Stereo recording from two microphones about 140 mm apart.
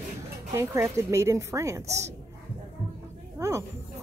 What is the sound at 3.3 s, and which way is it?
Speech, 20° right (ahead or behind).